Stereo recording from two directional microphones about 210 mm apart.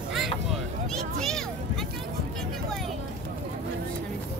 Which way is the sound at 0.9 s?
Centre (ahead or behind).